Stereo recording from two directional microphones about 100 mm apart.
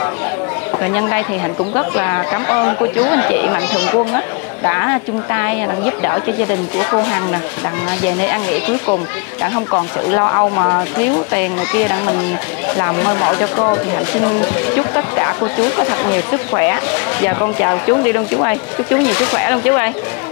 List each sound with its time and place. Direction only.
0.8 s speech: 25° left (ahead or behind)
9.4 s speech: 35° left (ahead or behind)